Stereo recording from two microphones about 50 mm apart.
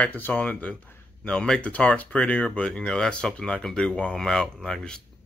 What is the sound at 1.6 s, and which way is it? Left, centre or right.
Speech, left.